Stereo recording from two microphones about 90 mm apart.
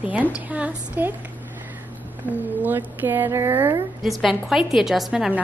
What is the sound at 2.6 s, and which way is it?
Speech, 20° right (ahead or behind).